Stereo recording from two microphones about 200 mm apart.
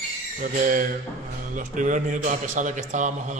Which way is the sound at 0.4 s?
45° right (ahead or behind).